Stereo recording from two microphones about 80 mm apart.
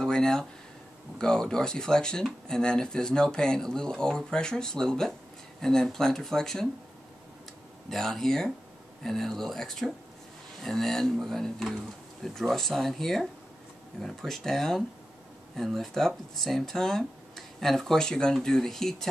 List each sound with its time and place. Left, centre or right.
0.0 s a sound: centre
1.1 s speech: centre
7.9 s speech: centre